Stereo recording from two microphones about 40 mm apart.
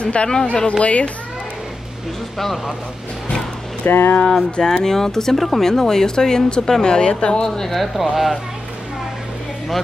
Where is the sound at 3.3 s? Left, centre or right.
Left.